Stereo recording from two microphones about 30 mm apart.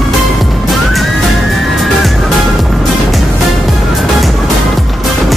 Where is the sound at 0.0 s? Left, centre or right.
Centre.